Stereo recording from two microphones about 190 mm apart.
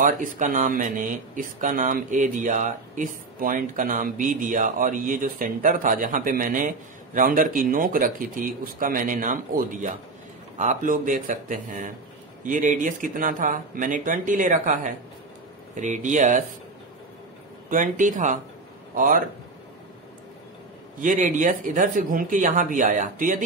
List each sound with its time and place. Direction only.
0.0 s speech: 45° right (ahead or behind)
17.6 s speech: 45° right (ahead or behind)
21.0 s speech: 45° right (ahead or behind)